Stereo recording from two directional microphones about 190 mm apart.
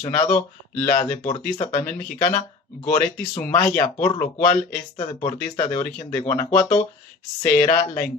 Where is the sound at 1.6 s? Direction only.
35° left (ahead or behind).